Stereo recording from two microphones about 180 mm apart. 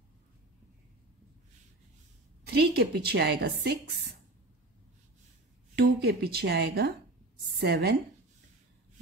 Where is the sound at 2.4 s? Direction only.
60° right (ahead or behind).